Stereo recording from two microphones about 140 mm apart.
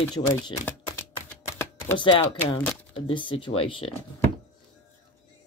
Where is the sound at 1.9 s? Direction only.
40° left (ahead or behind).